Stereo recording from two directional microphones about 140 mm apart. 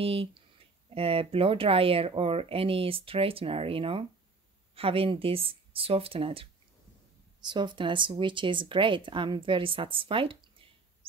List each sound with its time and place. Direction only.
0.0 s a woman's voice: 40° right (ahead or behind)